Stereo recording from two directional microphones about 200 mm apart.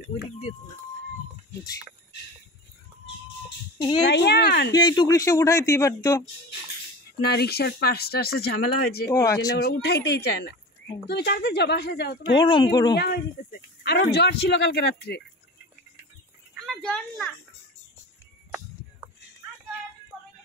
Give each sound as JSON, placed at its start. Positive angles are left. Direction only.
{"t": 3.7, "sound": "a child's voice", "side_deg": 20}
{"t": 4.1, "sound": "a woman's voice", "side_deg": 55}
{"t": 4.7, "sound": "speech", "side_deg": 20}
{"t": 7.3, "sound": "speech", "side_deg": 55}
{"t": 9.0, "sound": "speech", "side_deg": 15}
{"t": 9.6, "sound": "a woman's voice", "side_deg": 50}
{"t": 12.4, "sound": "speech", "side_deg": 25}
{"t": 12.9, "sound": "a woman's voice", "side_deg": 55}
{"t": 16.6, "sound": "a sound", "side_deg": 5}